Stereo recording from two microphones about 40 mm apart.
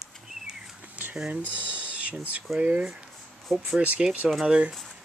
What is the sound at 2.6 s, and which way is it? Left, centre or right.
Speech, right.